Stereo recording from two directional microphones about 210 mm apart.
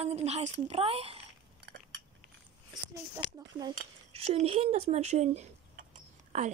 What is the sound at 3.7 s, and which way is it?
Speech, 30° right (ahead or behind).